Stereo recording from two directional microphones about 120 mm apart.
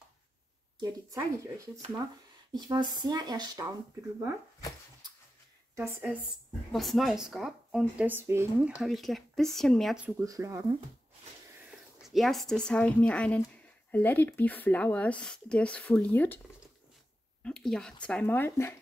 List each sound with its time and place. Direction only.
0.7 s speech: 30° right (ahead or behind)
2.5 s speech: 35° right (ahead or behind)
5.8 s speech: 15° right (ahead or behind)
6.7 s a woman's voice: centre (ahead or behind)
8.1 s speech: 20° right (ahead or behind)
8.6 s a woman's voice: 5° right (ahead or behind)
9.9 s speech: 15° right (ahead or behind)
10.2 s speech: 25° right (ahead or behind)
11.6 s speech: 5° right (ahead or behind); by 16.3 s 15° left (ahead or behind)
17.4 s speech: 5° left (ahead or behind)